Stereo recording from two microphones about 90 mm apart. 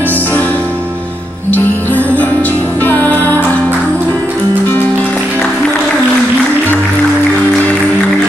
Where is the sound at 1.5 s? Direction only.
20° left (ahead or behind).